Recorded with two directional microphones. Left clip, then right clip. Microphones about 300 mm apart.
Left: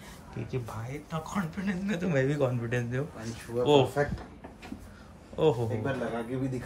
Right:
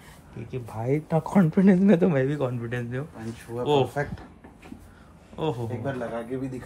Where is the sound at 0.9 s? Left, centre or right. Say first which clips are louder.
Right 12 dB; right.